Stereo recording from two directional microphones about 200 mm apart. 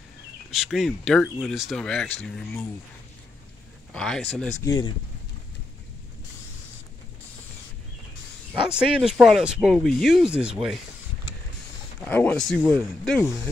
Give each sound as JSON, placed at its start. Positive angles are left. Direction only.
{"t": 0.5, "sound": "speech", "side_deg": 0}
{"t": 3.9, "sound": "speech", "side_deg": 5}
{"t": 4.6, "sound": "speech", "side_deg": 20}
{"t": 8.6, "sound": "speech", "side_deg": -5}
{"t": 12.0, "sound": "speech", "side_deg": 10}